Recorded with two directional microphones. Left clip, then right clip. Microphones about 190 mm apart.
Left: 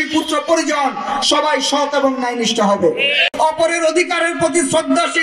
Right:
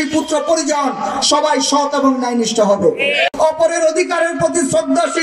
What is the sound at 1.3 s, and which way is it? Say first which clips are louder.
A man's voice: right 1 dB; 55° right (ahead or behind).